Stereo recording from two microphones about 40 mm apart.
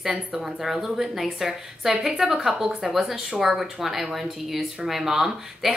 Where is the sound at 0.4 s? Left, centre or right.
Centre.